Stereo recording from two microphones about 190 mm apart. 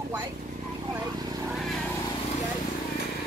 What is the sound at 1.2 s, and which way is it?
Vehicle, 20° right (ahead or behind).